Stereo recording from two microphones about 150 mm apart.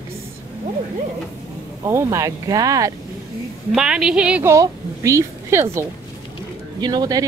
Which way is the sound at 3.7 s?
5° right (ahead or behind).